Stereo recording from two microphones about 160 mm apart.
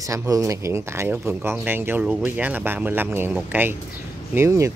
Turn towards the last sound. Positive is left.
turn(degrees=-20)  # may be behind; listen again after turning